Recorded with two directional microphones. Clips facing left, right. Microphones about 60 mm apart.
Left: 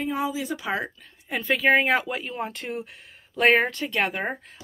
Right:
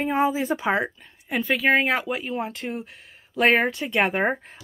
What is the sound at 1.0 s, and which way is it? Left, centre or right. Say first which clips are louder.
Speech: right 4 dB; centre.